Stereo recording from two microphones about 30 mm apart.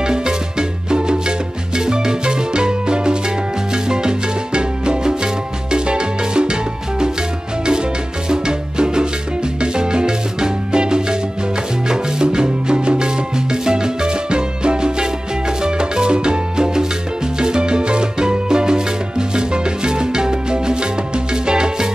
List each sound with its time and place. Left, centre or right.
0.0 s music: right
8.3 s music: right